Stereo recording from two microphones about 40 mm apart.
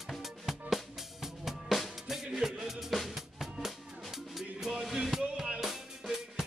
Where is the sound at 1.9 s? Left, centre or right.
Centre.